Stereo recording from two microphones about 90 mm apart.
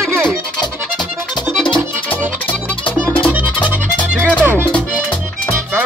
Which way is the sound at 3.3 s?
15° right (ahead or behind).